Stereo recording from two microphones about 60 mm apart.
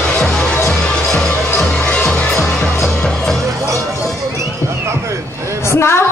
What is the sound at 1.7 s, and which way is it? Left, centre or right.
Music, left.